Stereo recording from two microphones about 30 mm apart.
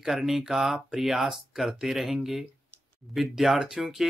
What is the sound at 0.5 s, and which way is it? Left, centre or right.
Speech, centre.